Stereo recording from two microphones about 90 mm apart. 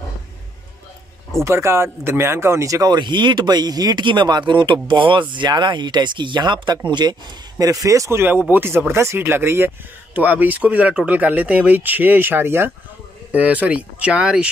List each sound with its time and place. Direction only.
1.4 s speech: 30° right (ahead or behind)
2.9 s speech: 60° right (ahead or behind)
7.5 s speech: 40° right (ahead or behind); by 14.5 s 10° right (ahead or behind)